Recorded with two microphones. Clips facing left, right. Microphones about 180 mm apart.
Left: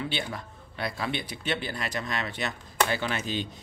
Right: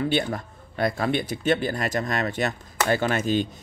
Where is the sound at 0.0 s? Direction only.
45° right (ahead or behind).